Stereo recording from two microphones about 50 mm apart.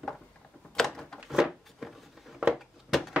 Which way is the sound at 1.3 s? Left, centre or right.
Centre.